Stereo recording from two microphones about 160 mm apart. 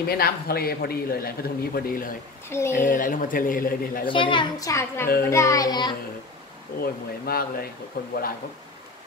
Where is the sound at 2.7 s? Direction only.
55° left (ahead or behind).